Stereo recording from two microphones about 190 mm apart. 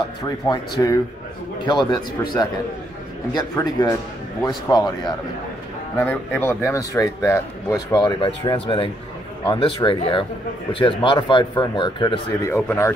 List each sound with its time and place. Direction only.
0.5 s speech: 20° left (ahead or behind)
2.0 s speech: 20° left (ahead or behind)
5.9 s speech: 10° left (ahead or behind)